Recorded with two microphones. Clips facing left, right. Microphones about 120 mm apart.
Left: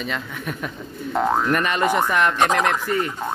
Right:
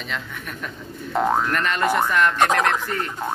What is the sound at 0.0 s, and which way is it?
Speech, 5° left (ahead or behind).